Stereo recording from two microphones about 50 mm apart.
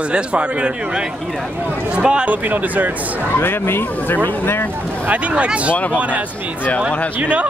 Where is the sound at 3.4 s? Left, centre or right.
Left.